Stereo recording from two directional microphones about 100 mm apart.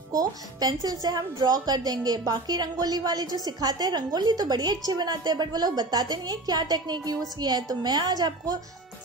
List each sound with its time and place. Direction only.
0.1 s a woman's voice: 40° right (ahead or behind)